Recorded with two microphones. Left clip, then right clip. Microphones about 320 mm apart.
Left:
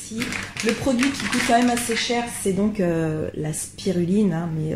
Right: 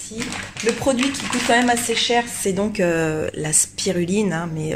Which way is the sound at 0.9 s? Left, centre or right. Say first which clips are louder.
Right 2 dB; right.